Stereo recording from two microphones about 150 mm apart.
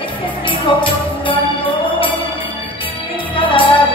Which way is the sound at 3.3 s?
35° left (ahead or behind).